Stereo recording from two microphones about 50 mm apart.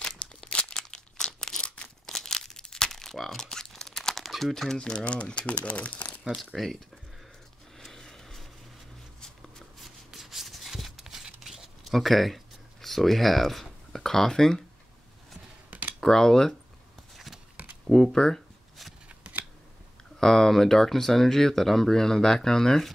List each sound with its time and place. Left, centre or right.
0.0 s crumpling: centre
4.7 s speech: centre
6.5 s speech: centre
7.7 s a sound: centre
9.2 s shuffling cards: centre
12.8 s speech: centre
16.0 s speech: centre
17.8 s speech: centre
20.2 s speech: centre